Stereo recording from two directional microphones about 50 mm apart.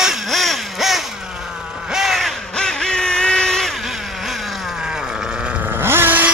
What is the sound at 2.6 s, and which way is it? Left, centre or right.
Vehicle, centre.